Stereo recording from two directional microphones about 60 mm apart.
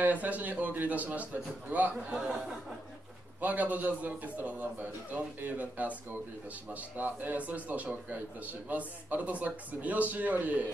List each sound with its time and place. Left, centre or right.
0.0 s a man's voice: right
3.3 s a man's voice: right